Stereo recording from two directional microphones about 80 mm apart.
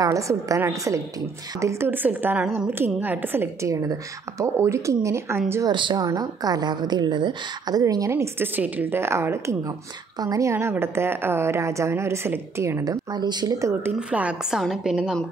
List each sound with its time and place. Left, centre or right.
0.0 s a woman's voice: right
3.6 s a woman's voice: right
5.7 s speech: right
6.1 s a woman's voice: right
8.5 s a woman's voice: right
9.7 s a woman's voice: right
10.5 s a woman's voice: right
12.8 s a woman's voice: right
13.6 s a woman's voice: right
13.9 s a woman's voice: centre